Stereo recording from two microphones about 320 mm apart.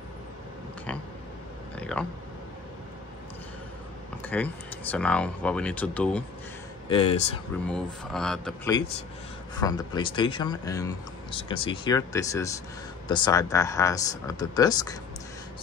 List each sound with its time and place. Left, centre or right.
1.8 s speech: centre
4.2 s speech: centre
6.9 s speech: centre
7.6 s speech: centre
9.6 s speech: centre